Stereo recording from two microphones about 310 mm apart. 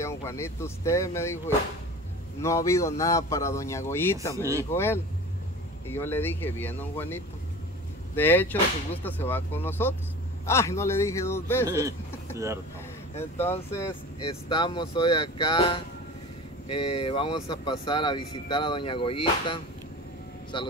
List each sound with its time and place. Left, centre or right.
0.0 s speech: centre
2.4 s speech: centre
13.4 s speech: centre